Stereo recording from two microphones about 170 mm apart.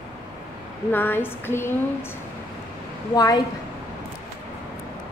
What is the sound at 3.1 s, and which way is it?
Speech, 20° left (ahead or behind).